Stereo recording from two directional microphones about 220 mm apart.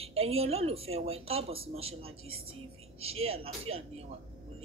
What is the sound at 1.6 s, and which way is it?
Speech, 70° right (ahead or behind).